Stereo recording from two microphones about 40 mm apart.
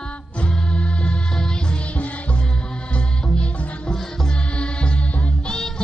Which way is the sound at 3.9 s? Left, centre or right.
Centre.